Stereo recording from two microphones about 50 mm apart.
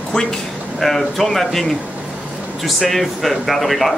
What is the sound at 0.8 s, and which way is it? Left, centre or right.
Speech, centre.